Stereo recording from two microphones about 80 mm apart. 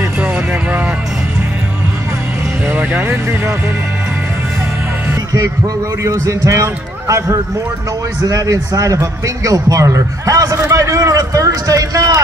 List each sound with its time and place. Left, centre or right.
0.2 s vehicle: centre
2.6 s music: right
2.9 s speech: centre
6.0 s a man's voice: right